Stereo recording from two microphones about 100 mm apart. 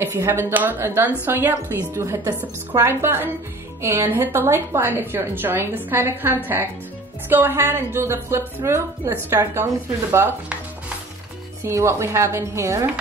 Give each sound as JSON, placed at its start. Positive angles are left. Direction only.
{"t": 0.0, "sound": "a woman's voice", "side_deg": -25}
{"t": 11.6, "sound": "a woman's voice", "side_deg": -25}